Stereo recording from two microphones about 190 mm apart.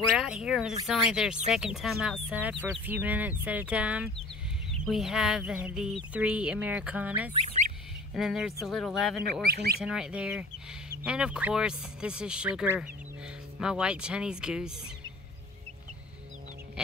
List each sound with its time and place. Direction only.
0.1 s speech: 5° right (ahead or behind)
7.3 s speech: 40° right (ahead or behind)
8.1 s speech: centre (ahead or behind)
9.4 s speech: 55° right (ahead or behind)
9.8 s speech: 5° right (ahead or behind)